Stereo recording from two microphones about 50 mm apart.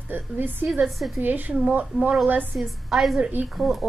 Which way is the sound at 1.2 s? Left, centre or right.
Right.